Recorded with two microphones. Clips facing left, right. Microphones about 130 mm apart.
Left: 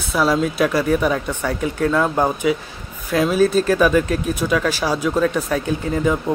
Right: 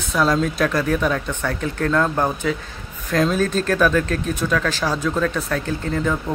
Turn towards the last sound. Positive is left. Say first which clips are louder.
# left 3 dB
turn(degrees=10)  # may be behind; listen again after turning